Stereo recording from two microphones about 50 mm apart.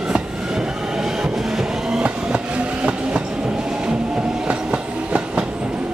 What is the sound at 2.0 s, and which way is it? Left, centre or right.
Train, right.